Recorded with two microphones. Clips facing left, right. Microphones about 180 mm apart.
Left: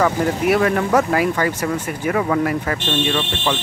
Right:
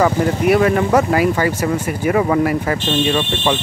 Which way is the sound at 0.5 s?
5° right (ahead or behind).